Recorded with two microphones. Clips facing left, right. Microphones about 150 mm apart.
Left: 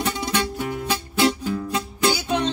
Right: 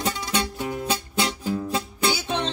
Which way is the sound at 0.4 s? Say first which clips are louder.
Left 2 dB; 20° right (ahead or behind).